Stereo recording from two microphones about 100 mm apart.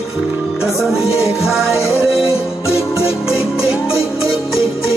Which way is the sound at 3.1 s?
5° right (ahead or behind).